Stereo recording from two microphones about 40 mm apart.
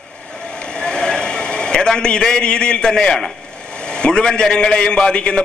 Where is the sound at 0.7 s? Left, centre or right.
Centre.